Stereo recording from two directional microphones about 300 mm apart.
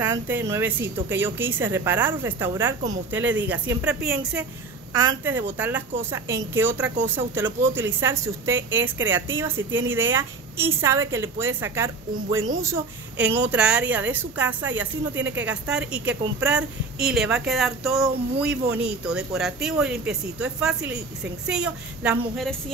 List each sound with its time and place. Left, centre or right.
0.0 s a woman's voice: centre
15.1 s a woman's voice: right
15.4 s a woman's voice: centre